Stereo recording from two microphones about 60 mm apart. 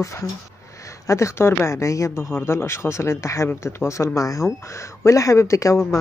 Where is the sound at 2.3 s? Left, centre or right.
Left.